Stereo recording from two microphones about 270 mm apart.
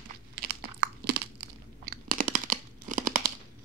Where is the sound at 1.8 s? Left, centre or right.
Right.